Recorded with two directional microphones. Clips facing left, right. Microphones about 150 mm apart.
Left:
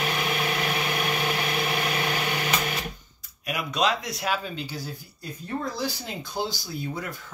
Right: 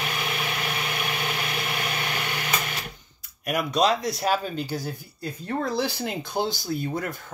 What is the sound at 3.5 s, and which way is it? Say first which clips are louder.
Speech: right 3 dB; 40° right (ahead or behind).